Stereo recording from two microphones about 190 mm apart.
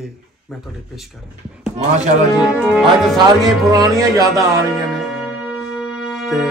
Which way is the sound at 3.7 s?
15° right (ahead or behind).